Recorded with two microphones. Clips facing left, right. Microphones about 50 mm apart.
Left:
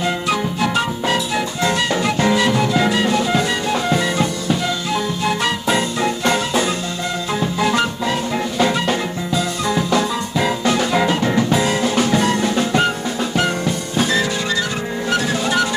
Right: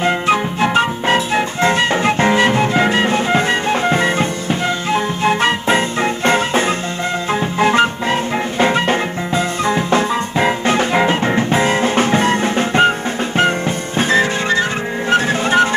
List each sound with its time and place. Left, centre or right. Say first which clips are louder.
0.0 s music: right 4 dB; right